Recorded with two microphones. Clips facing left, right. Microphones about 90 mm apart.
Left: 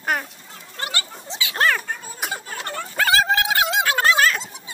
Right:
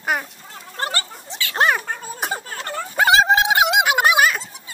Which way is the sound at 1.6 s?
20° right (ahead or behind).